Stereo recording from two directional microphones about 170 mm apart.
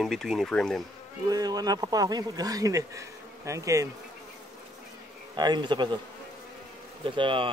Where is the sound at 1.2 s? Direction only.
20° right (ahead or behind).